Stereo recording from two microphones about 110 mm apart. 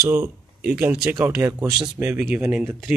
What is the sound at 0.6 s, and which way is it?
Speech, 10° right (ahead or behind).